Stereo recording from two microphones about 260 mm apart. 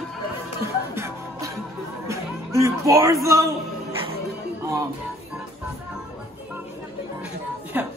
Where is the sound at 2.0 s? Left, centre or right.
Centre.